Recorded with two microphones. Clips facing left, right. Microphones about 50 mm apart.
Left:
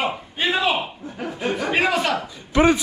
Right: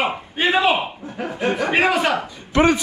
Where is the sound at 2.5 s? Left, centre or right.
Right.